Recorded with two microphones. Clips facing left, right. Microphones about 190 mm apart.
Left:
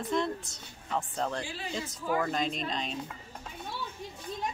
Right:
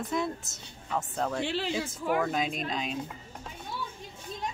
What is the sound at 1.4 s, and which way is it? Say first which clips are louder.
Speech: right 9 dB; 75° right (ahead or behind).